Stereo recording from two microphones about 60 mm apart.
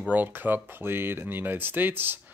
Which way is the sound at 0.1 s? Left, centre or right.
Right.